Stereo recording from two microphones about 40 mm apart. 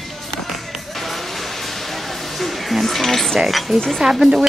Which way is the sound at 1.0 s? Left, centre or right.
Centre.